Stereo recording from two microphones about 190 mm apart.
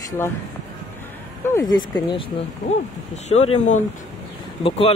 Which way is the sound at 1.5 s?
20° left (ahead or behind).